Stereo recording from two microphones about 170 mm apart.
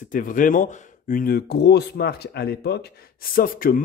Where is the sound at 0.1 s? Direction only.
50° left (ahead or behind); by 2.8 s 75° left (ahead or behind).